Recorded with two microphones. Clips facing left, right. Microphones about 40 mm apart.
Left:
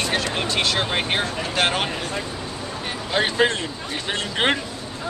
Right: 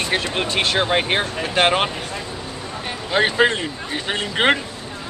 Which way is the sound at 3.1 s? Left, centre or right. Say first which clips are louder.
Right 3 dB; centre.